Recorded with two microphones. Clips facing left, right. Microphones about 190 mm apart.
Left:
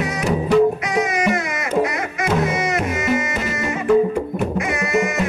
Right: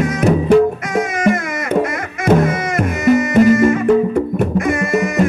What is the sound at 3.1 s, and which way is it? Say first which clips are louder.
Music: right 11 dB; 50° right (ahead or behind).